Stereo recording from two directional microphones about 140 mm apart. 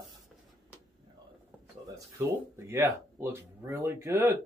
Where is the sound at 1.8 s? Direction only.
20° right (ahead or behind).